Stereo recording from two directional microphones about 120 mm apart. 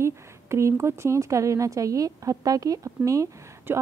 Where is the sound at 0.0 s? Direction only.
25° right (ahead or behind).